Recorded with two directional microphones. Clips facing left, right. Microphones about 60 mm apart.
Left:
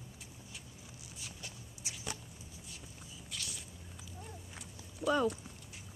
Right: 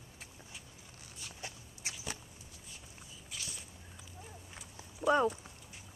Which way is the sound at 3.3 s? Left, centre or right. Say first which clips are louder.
Left 1 dB; centre.